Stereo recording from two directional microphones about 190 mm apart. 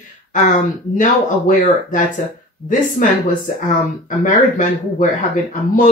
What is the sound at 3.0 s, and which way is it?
Speech, 45° left (ahead or behind).